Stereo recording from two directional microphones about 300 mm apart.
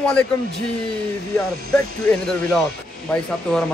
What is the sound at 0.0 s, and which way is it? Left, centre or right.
Speech, centre.